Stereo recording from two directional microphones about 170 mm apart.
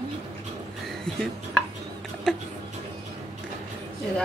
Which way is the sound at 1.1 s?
5° left (ahead or behind).